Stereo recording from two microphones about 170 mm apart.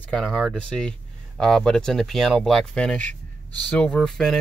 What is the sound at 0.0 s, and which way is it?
Speech, centre (ahead or behind).